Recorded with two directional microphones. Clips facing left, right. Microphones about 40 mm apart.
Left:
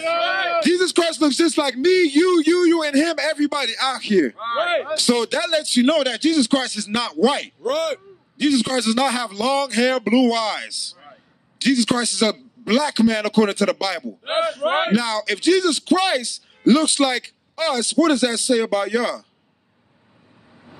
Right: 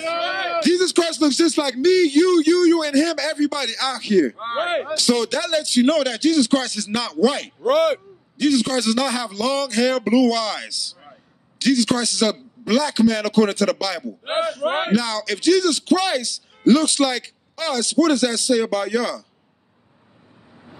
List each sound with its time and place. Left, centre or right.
0.0 s a man's voice: left
7.6 s speech: centre
8.4 s a man's voice: left